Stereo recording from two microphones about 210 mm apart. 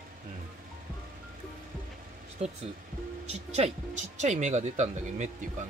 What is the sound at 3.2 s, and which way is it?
Speech, 30° right (ahead or behind).